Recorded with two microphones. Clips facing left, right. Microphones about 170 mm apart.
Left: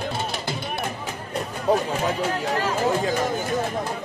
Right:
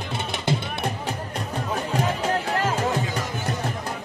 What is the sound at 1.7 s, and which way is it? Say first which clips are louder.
Music: left 10 dB; 35° left (ahead or behind).